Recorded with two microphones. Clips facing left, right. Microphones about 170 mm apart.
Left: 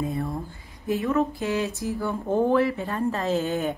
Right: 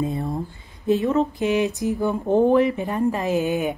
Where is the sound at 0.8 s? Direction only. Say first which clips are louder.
Right 4 dB; 20° right (ahead or behind).